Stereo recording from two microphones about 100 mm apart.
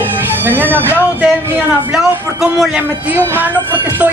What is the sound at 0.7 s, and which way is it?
Speech, 20° right (ahead or behind).